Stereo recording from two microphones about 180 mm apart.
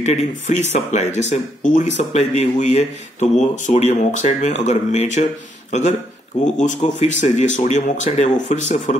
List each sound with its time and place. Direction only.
0.0 s speech: 40° left (ahead or behind)